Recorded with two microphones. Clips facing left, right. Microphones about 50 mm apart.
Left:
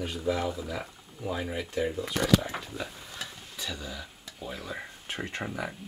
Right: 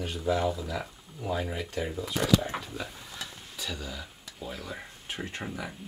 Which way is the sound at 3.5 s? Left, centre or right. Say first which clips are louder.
Right 1 dB; centre.